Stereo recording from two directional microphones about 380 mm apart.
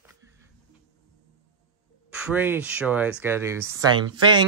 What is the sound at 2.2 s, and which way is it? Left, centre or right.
Speech, centre.